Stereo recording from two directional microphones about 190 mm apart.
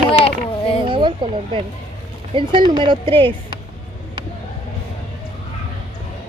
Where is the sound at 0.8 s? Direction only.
25° right (ahead or behind).